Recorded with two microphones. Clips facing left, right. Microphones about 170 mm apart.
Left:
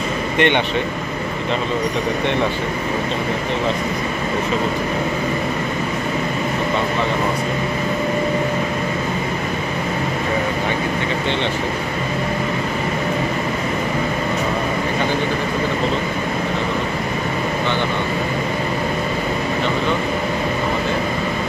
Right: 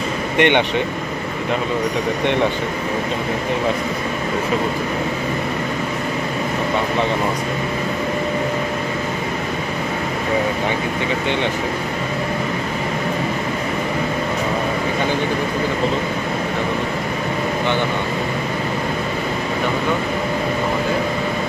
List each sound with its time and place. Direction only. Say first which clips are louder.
0.4 s speech: right 2 dB; 15° right (ahead or behind)